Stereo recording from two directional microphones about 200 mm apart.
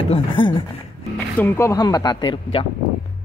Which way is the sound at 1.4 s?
10° left (ahead or behind).